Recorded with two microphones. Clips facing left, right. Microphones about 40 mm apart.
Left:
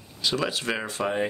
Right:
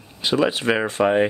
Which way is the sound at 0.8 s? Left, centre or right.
Right.